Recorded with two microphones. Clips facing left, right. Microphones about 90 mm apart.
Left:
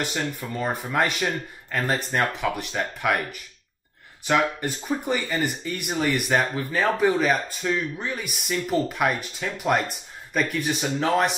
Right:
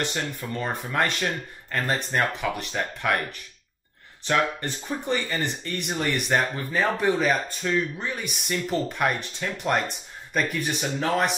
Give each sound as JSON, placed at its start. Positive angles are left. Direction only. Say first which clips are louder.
{"t": 0.0, "sound": "speech", "louder": "left 1 dB", "side_deg": 5}